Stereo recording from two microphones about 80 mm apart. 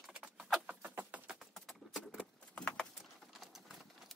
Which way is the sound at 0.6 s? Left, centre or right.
Right.